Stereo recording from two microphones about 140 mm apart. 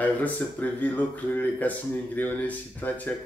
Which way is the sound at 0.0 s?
10° left (ahead or behind).